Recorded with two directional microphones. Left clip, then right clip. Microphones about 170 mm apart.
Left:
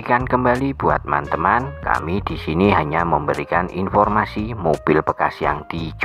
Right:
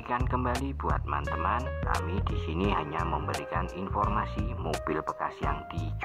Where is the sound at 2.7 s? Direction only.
40° left (ahead or behind).